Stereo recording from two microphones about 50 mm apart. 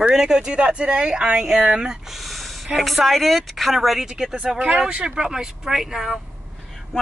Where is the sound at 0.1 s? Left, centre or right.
Centre.